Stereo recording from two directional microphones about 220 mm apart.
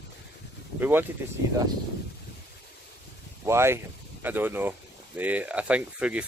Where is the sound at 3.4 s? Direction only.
10° right (ahead or behind).